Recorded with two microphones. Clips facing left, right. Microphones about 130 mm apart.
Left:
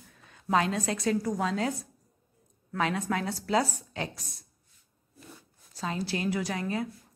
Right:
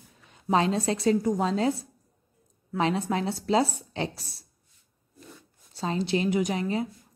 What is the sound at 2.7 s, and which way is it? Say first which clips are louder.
A woman's voice: right 3 dB; 25° right (ahead or behind).